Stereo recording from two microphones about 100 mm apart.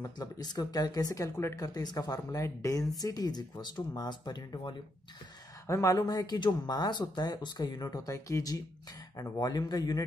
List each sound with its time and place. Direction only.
0.0 s speech: 40° left (ahead or behind)
5.7 s speech: 30° left (ahead or behind)